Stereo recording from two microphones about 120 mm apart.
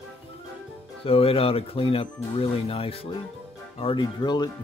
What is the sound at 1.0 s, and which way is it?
Speech, 55° left (ahead or behind).